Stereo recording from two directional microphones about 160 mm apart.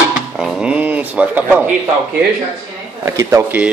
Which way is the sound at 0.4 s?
5° right (ahead or behind).